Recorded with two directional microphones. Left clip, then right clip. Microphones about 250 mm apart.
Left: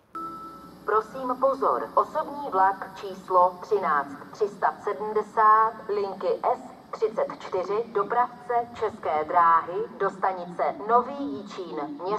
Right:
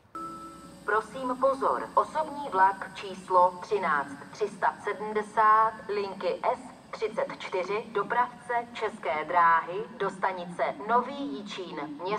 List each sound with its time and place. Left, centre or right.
0.8 s speech: right